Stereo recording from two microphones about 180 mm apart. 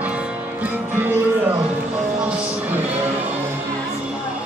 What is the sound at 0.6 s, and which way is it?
Music, 10° right (ahead or behind).